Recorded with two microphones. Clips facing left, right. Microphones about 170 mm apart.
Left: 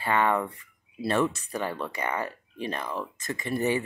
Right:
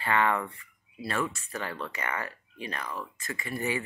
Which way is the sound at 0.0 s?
15° left (ahead or behind).